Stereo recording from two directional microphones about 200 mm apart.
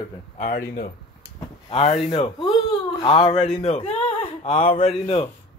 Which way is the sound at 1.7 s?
30° left (ahead or behind).